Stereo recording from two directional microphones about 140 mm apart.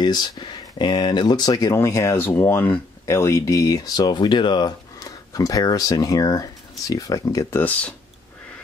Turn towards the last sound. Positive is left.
turn(degrees=25)  # may be behind; listen again after turning